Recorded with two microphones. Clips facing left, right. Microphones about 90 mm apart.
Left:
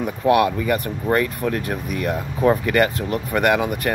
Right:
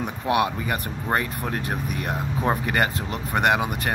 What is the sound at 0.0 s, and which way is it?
Speech, 25° right (ahead or behind).